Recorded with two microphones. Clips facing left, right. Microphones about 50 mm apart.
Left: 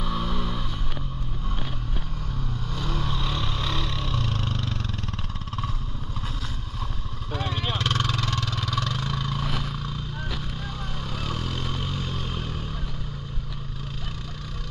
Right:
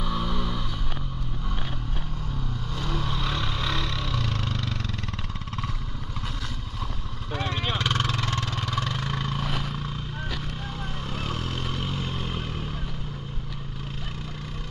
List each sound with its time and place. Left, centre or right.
0.0 s music: centre
2.8 s vehicle: centre
7.5 s vehicle: centre
8.0 s vehicle: right
11.1 s vehicle: right